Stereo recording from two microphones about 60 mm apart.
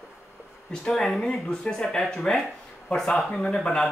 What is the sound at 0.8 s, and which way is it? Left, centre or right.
Speech, centre.